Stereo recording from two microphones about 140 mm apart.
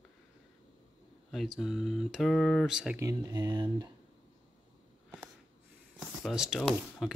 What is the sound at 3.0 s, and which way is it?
Speech, 20° right (ahead or behind).